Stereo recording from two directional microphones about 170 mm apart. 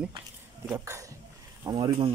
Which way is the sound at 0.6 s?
15° right (ahead or behind).